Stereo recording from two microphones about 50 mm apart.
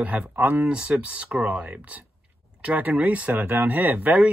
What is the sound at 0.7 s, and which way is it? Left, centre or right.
Speech, right.